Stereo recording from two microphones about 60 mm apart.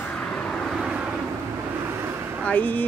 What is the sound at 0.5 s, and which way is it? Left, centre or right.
Vehicle, centre.